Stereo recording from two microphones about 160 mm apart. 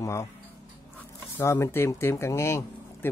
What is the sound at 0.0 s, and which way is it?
Speech, 15° left (ahead or behind).